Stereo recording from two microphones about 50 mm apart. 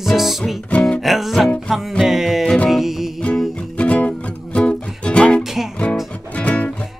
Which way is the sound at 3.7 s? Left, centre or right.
Left.